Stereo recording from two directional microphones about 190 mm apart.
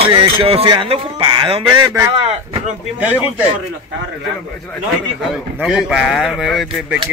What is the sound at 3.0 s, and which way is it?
Speech, 5° right (ahead or behind).